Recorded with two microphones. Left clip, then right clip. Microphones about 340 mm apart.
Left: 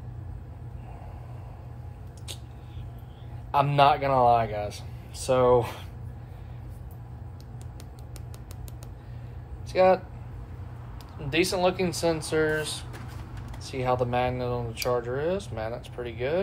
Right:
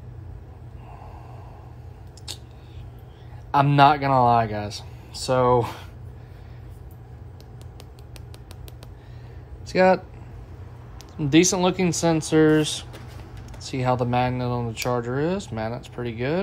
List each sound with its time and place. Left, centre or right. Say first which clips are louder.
2.3 s a sound: right 5 dB; right
3.5 s speech: right 4 dB; right
9.7 s speech: right 2 dB; right
11.2 s speech: right 5 dB; right